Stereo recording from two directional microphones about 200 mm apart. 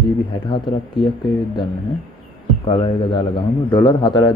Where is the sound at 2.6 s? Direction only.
25° left (ahead or behind).